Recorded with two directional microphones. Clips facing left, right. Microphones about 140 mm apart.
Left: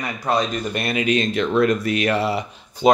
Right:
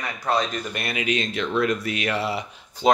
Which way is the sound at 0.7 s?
35° left (ahead or behind).